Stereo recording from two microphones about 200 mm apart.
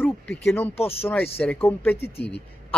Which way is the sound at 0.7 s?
30° left (ahead or behind).